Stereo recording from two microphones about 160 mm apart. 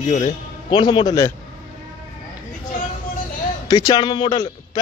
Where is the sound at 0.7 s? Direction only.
30° left (ahead or behind).